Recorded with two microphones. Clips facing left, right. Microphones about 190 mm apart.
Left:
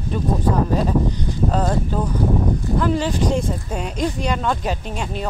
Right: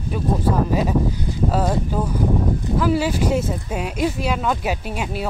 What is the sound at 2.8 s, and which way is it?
Speech, 5° right (ahead or behind).